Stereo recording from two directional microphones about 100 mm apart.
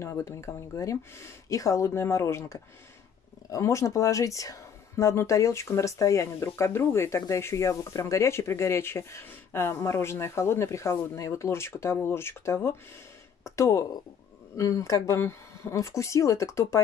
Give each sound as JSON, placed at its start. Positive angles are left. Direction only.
{"t": 0.0, "sound": "speech", "side_deg": 30}